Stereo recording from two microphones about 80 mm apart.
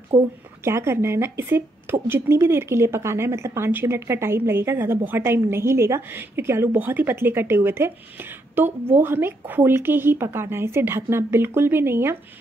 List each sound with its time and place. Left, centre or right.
0.1 s a woman's voice: right
0.7 s speech: right